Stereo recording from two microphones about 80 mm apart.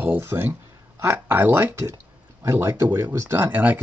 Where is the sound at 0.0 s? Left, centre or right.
Right.